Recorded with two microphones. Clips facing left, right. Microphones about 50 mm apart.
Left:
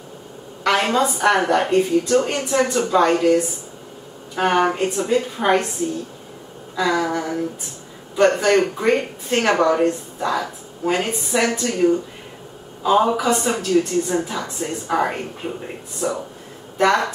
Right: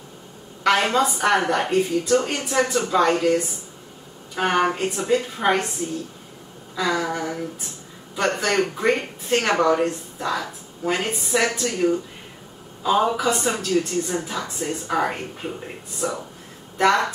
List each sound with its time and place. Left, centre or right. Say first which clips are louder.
0.7 s a woman's voice: left 1 dB; centre
4.4 s a woman's voice: left 3 dB; centre
6.8 s a woman's voice: left 3 dB; centre
8.4 s a woman's voice: left 4 dB; centre